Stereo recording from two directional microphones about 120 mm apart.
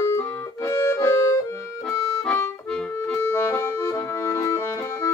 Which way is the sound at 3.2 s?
20° left (ahead or behind).